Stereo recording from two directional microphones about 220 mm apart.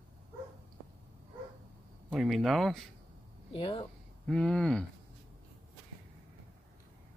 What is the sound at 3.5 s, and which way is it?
Speech, 25° left (ahead or behind).